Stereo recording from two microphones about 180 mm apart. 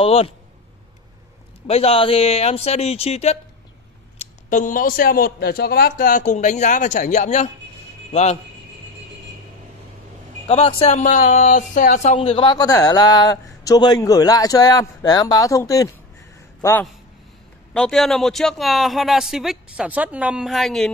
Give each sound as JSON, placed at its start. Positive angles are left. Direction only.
{"t": 0.0, "sound": "speech", "side_deg": 35}
{"t": 1.7, "sound": "speech", "side_deg": 35}
{"t": 10.4, "sound": "speech", "side_deg": 35}
{"t": 17.7, "sound": "speech", "side_deg": 0}